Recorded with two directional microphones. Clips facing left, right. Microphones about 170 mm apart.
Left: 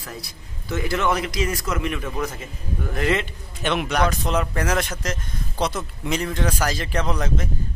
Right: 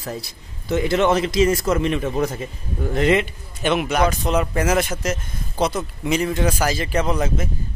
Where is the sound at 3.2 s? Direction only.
5° right (ahead or behind).